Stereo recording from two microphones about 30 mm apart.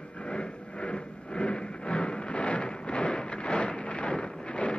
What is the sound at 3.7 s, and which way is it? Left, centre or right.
Wind noise, left.